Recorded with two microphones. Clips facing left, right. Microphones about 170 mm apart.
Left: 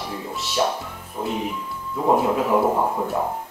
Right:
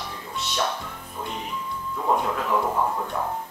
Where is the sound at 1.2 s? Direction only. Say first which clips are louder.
Left 7 dB; 25° left (ahead or behind).